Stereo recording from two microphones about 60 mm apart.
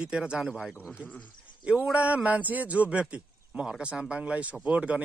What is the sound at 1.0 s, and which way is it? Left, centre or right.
Speech, left.